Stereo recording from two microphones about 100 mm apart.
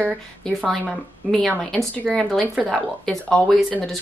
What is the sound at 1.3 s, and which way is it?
Speech, centre (ahead or behind).